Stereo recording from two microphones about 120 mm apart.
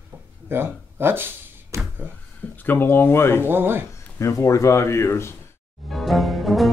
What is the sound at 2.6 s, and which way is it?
Speech, 15° left (ahead or behind).